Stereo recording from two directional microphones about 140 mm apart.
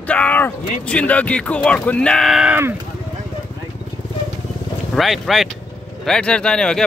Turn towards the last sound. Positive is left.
turn(degrees=5)  # may be behind; listen again after turning